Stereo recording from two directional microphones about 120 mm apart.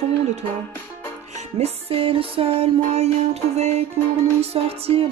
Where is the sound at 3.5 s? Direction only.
65° right (ahead or behind).